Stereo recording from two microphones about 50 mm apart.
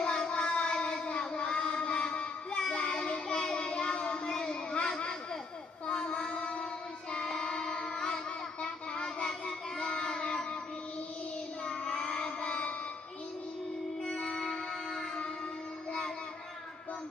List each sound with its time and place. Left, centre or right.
0.0 s child singing: left
10.2 s music: centre
11.6 s child singing: centre
14.0 s music: centre